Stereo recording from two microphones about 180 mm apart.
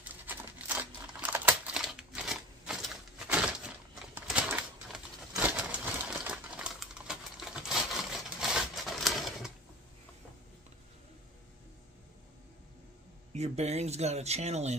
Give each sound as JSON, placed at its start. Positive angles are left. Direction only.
{"t": 0.0, "sound": "a sound", "side_deg": -10}
{"t": 1.2, "sound": "crumpling", "side_deg": -5}
{"t": 4.1, "sound": "typewriter", "side_deg": -10}
{"t": 13.3, "sound": "speech", "side_deg": -35}